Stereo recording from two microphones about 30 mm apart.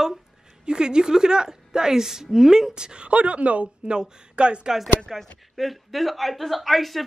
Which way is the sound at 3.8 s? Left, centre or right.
Right.